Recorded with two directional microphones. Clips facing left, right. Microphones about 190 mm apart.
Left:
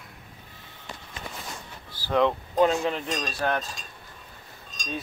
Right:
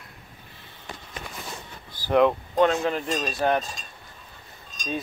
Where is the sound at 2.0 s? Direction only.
15° right (ahead or behind).